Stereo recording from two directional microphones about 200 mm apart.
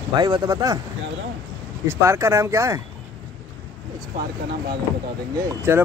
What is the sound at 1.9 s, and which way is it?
Speech, 15° right (ahead or behind).